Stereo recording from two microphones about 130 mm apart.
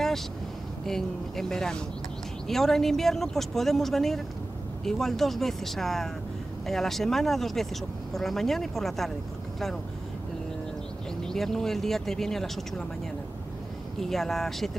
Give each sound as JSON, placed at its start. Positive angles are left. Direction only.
{"t": 0.8, "sound": "speech", "side_deg": 0}
{"t": 11.2, "sound": "speech", "side_deg": 5}
{"t": 13.9, "sound": "speech", "side_deg": 0}